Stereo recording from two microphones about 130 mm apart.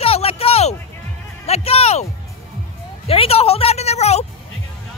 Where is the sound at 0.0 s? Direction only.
50° left (ahead or behind).